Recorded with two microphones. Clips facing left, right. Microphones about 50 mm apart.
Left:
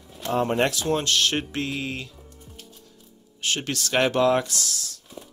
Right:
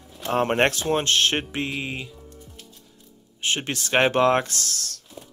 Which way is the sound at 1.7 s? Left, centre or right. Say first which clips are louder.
Even; centre.